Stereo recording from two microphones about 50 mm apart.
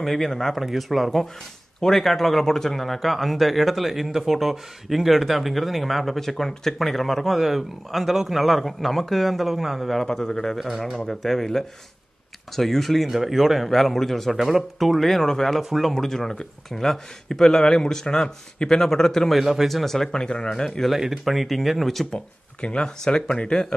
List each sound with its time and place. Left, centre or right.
0.0 s speech: centre
10.6 s speech: centre
15.6 s speech: centre
15.9 s speech: centre
19.4 s speech: centre
19.8 s speech: centre
22.1 s speech: centre